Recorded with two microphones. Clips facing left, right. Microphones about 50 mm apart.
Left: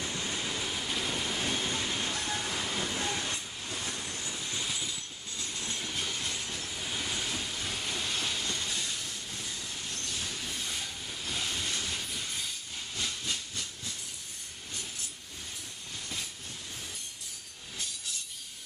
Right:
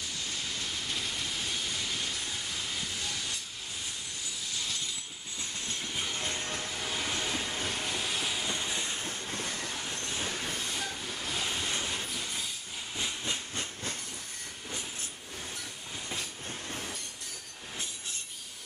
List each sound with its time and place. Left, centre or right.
0.0 s waves: left
1.4 s train: left
4.6 s vehicle: centre
6.1 s train: right
7.2 s train: centre
7.4 s train: right
7.7 s train: centre; by 9.8 s right
9.8 s train: right
11.2 s train: centre
12.1 s train: centre
12.9 s steam: centre